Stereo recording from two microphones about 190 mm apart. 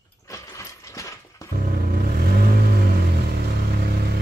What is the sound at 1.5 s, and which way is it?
Vehicle, 50° right (ahead or behind).